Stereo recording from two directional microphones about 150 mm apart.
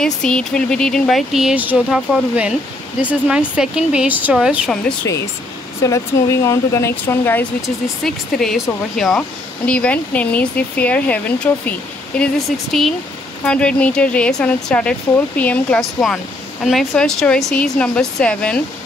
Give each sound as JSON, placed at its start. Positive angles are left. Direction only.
{"t": 0.0, "sound": "speech", "side_deg": 5}
{"t": 5.8, "sound": "speech", "side_deg": 20}
{"t": 7.6, "sound": "a woman's voice", "side_deg": 0}